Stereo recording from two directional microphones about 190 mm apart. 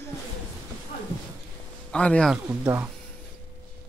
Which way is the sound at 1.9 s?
5° left (ahead or behind).